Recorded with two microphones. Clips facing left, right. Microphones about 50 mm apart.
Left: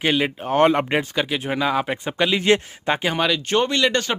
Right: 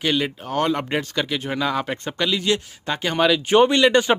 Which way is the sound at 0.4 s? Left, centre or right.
Left.